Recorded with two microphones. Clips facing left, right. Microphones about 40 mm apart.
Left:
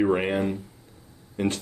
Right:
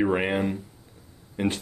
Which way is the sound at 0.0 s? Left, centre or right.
Centre.